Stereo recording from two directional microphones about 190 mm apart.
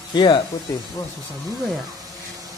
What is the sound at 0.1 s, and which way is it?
Speech, 25° left (ahead or behind).